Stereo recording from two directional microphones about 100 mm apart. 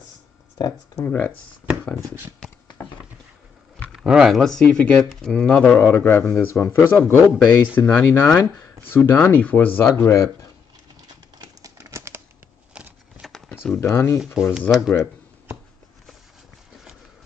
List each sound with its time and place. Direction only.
0.6 s speech: 40° left (ahead or behind)
1.0 s speech: 20° left (ahead or behind)
2.4 s a sound: 10° left (ahead or behind)
3.9 s speech: 5° right (ahead or behind); by 5.8 s 10° left (ahead or behind)
5.8 s speech: 20° left (ahead or behind)
11.1 s a sound: 40° right (ahead or behind)
12.7 s a sound: 10° right (ahead or behind)
13.7 s speech: 25° left (ahead or behind)
14.3 s speech: 5° right (ahead or behind)